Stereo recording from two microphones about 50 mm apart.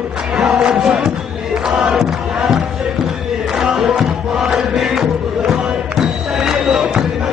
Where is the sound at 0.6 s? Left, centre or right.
Centre.